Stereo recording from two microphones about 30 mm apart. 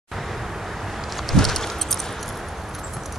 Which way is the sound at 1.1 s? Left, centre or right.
Centre.